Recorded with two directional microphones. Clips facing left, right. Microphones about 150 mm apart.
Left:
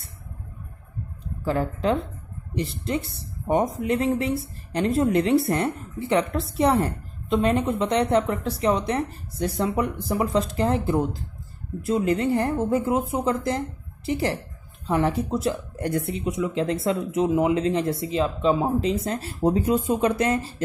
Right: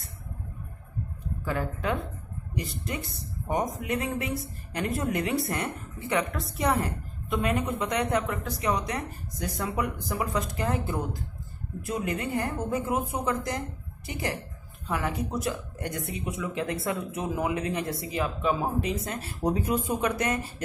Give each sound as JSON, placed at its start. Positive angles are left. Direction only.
{"t": 1.4, "sound": "a woman's voice", "side_deg": 30}